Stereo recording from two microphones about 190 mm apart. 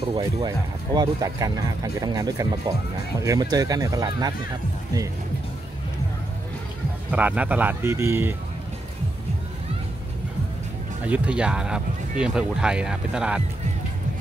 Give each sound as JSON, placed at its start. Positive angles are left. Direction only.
{"t": 0.1, "sound": "speech", "side_deg": -20}
{"t": 7.1, "sound": "speech", "side_deg": -10}
{"t": 11.1, "sound": "speech", "side_deg": -5}